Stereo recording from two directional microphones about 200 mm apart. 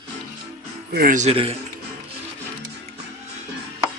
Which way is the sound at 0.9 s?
40° right (ahead or behind).